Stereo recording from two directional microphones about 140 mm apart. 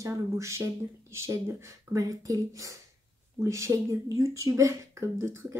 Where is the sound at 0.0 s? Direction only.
20° right (ahead or behind).